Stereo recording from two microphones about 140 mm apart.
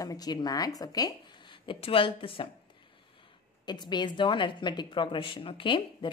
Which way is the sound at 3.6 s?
30° left (ahead or behind).